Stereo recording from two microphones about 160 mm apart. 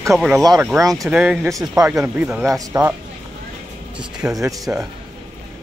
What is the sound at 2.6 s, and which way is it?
Speech, 20° right (ahead or behind).